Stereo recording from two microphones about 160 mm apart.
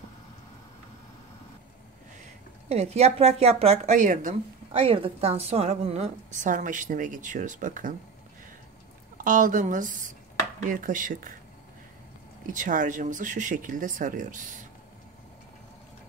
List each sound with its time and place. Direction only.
2.7 s a woman's voice: 40° right (ahead or behind)
4.7 s a woman's voice: 35° right (ahead or behind); by 7.9 s 55° right (ahead or behind)
9.2 s speech: 55° right (ahead or behind)
12.5 s speech: 55° right (ahead or behind)